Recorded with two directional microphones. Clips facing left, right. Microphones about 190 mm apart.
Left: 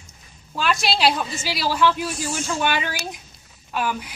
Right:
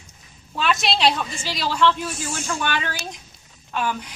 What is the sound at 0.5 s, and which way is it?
A woman's voice, centre (ahead or behind).